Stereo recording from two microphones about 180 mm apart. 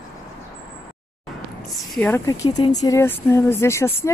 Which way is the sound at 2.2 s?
20° left (ahead or behind).